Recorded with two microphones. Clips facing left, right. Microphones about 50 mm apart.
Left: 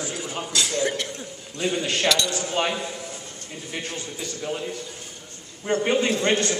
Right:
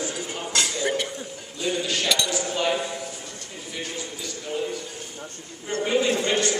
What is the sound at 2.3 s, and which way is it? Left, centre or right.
Speech, left.